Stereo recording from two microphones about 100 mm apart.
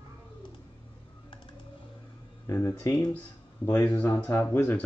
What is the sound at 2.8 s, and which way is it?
Speech, 35° left (ahead or behind).